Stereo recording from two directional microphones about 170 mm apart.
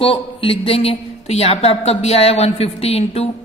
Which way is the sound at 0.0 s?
35° left (ahead or behind).